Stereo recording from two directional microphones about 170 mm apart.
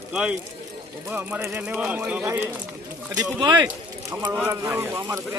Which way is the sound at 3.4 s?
25° right (ahead or behind).